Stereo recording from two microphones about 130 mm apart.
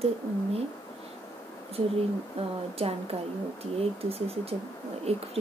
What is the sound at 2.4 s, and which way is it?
Speech, 50° right (ahead or behind).